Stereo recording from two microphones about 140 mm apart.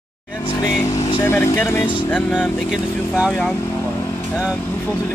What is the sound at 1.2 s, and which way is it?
Speech, 15° left (ahead or behind).